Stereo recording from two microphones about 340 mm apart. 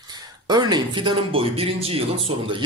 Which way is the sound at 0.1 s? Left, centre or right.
Centre.